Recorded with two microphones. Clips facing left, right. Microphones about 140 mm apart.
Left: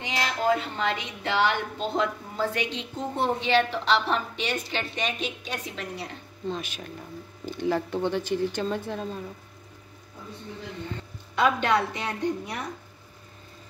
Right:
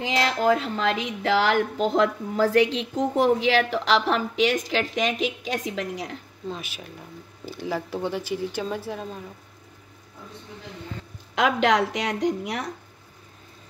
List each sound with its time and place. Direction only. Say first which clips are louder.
0.0 s speech: right 4 dB; 90° right
6.5 s speech: left 3 dB; 5° right (ahead or behind)
11.3 s speech: right 2 dB; 90° right